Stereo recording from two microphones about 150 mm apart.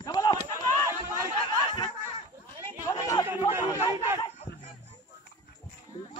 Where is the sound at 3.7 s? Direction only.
15° right (ahead or behind).